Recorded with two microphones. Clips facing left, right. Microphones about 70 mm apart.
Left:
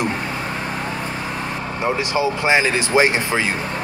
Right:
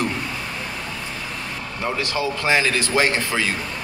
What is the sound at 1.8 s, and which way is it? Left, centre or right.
Speech, centre.